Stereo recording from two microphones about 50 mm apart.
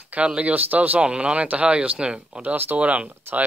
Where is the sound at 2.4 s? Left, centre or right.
Right.